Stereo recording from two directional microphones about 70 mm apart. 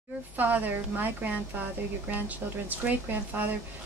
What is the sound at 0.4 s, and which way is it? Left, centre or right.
A woman's voice, right.